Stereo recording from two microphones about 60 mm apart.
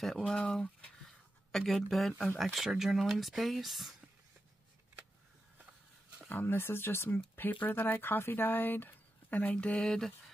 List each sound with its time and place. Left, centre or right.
0.0 s speech: centre
6.2 s speech: left; by 10.1 s centre